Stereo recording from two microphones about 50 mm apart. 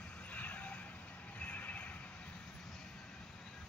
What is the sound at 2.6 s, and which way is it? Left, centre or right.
Vehicle, centre.